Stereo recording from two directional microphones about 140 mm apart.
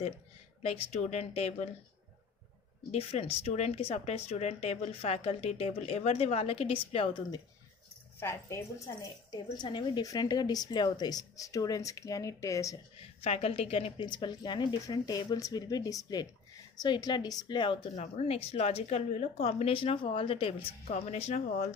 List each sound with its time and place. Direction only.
0.6 s speech: 50° left (ahead or behind)
2.9 s speech: 45° left (ahead or behind)
8.2 s a woman's voice: 20° left (ahead or behind)
13.0 s a woman's voice: 45° left (ahead or behind)
17.9 s speech: 50° left (ahead or behind)